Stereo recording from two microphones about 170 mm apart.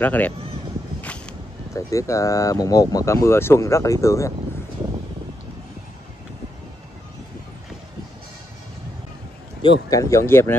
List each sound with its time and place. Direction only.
0.0 s speech: 10° left (ahead or behind)
1.0 s a sound: 5° left (ahead or behind)
1.7 s speech: 20° left (ahead or behind)
9.6 s speech: 25° left (ahead or behind)